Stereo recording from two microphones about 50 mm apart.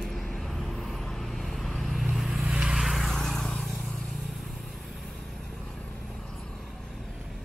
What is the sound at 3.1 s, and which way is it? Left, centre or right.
Vehicle, centre.